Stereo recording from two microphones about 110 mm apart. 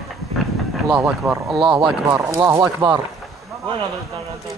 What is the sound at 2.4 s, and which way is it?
Speech, 25° right (ahead or behind).